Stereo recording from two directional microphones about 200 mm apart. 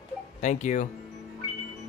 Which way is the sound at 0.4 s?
35° left (ahead or behind).